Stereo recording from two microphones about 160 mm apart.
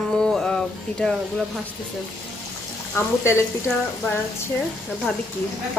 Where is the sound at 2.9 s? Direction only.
15° left (ahead or behind).